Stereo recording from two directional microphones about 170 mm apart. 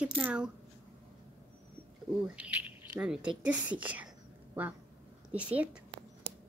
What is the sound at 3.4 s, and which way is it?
Whispering, 10° right (ahead or behind).